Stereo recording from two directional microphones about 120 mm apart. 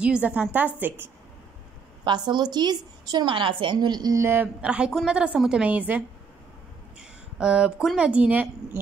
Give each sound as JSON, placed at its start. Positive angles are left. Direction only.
{"t": 0.0, "sound": "a woman's voice", "side_deg": -10}
{"t": 2.0, "sound": "a woman's voice", "side_deg": -35}